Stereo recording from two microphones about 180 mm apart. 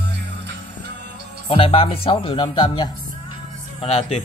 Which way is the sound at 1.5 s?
30° left (ahead or behind).